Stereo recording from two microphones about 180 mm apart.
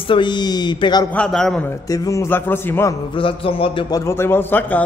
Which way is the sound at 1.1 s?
5° left (ahead or behind).